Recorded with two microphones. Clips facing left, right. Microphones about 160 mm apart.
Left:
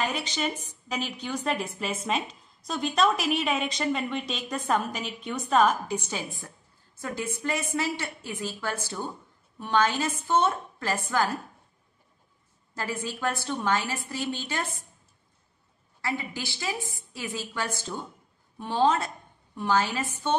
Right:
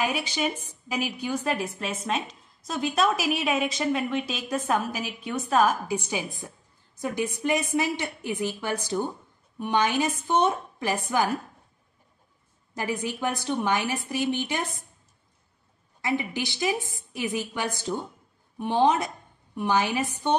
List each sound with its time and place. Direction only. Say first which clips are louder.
0.0 s a woman's voice: right 2 dB; 10° right (ahead or behind)
12.7 s a woman's voice: right 3 dB; 15° right (ahead or behind)
16.0 s a woman's voice: right 4 dB; 20° right (ahead or behind)